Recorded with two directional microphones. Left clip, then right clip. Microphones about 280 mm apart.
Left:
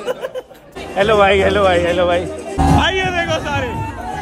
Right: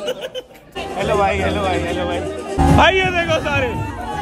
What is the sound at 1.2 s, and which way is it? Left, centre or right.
Speech, left.